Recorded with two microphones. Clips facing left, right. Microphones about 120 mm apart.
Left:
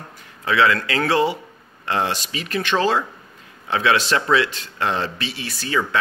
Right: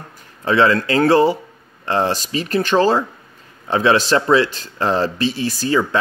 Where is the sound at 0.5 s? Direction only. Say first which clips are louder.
Right 4 dB; 35° right (ahead or behind).